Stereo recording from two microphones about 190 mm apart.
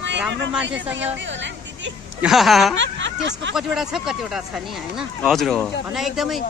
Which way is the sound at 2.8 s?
75° right (ahead or behind).